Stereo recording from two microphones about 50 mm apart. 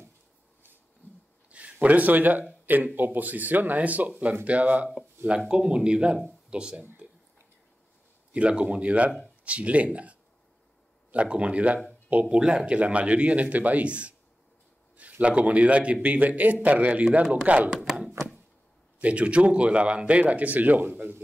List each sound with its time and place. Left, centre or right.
1.0 s a sound: left
1.5 s speech: right
5.5 s speech: centre
8.3 s speech: right
17.6 s chopping: centre
18.9 s speech: right